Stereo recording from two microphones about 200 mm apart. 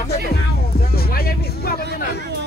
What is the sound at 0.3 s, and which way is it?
Music, 50° left (ahead or behind).